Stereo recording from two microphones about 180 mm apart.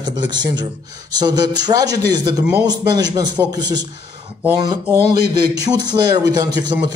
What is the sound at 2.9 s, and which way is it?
Speech, 20° right (ahead or behind).